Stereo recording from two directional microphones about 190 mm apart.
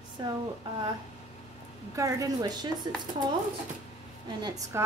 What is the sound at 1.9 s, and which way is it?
Speech, 15° right (ahead or behind).